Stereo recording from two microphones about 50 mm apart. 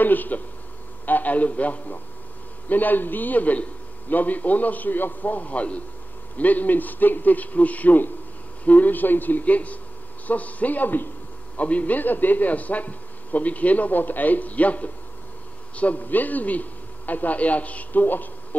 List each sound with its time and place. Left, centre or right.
0.0 s a man's voice: left